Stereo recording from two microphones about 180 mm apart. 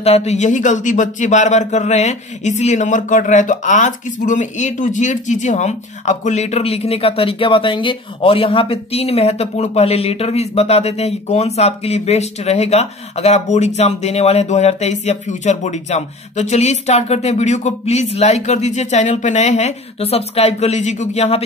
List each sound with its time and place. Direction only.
0.0 s speech: 35° left (ahead or behind)